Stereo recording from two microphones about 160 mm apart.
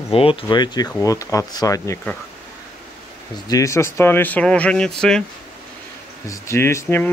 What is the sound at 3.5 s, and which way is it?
Speech, 20° left (ahead or behind).